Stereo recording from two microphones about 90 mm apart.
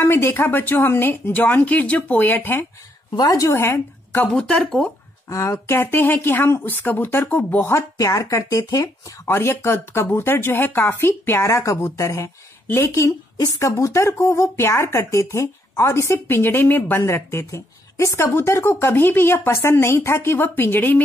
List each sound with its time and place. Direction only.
0.0 s a woman's voice: 25° left (ahead or behind)
3.2 s speech: 40° left (ahead or behind)
4.3 s speech: 10° left (ahead or behind)
5.3 s a woman's voice: 35° left (ahead or behind)
7.7 s a woman's voice: 40° left (ahead or behind); by 21.0 s 20° left (ahead or behind)